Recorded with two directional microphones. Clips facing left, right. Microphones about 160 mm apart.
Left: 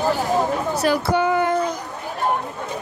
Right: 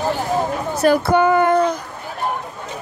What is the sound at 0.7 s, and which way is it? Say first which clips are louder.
Speech: right 6 dB; 50° right (ahead or behind).